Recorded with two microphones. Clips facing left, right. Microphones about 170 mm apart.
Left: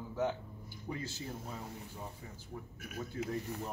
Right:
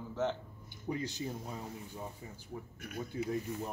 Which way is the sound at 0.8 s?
15° right (ahead or behind).